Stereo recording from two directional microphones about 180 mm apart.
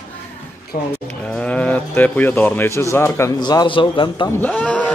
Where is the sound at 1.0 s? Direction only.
5° left (ahead or behind); by 4.3 s 25° left (ahead or behind).